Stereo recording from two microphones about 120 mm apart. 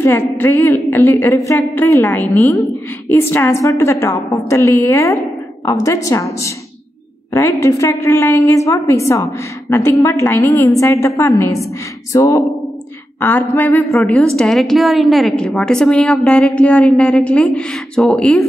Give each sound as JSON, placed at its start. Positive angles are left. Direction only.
{"t": 0.0, "sound": "a woman's voice", "side_deg": 20}
{"t": 13.2, "sound": "a woman's voice", "side_deg": 15}